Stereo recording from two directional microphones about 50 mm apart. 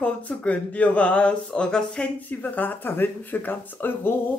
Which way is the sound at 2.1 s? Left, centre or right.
Left.